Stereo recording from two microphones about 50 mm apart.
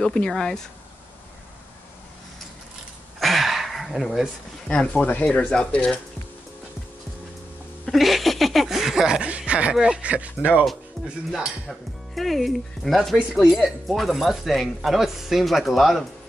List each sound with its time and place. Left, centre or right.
0.0 s speech: centre
3.2 s a sound: centre
4.6 s speech: centre
5.0 s speech: left
5.5 s speech: centre
7.9 s laughter: centre
9.5 s speech: right
11.0 s dishes: centre
12.2 s speech: centre
13.3 s speech: centre